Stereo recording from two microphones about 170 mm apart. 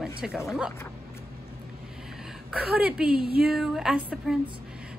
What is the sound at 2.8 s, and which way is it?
A woman's voice, 5° right (ahead or behind).